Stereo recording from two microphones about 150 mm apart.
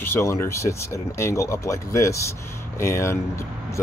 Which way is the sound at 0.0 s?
15° left (ahead or behind).